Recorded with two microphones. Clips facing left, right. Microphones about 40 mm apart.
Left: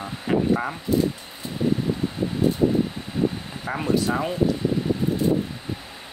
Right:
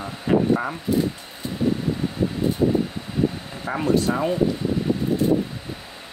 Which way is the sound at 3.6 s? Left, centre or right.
Centre.